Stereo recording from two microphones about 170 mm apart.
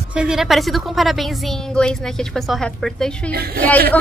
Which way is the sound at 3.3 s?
65° right (ahead or behind).